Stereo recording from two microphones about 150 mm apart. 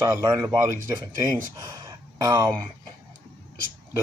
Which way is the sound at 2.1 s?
25° right (ahead or behind).